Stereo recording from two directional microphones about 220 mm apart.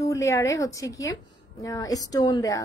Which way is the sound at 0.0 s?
15° left (ahead or behind).